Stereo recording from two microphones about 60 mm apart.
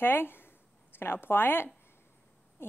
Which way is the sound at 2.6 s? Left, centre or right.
Left.